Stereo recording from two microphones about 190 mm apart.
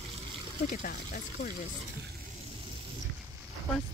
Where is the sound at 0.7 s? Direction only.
45° left (ahead or behind).